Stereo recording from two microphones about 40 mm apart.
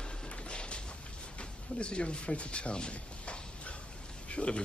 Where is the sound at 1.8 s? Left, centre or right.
Left.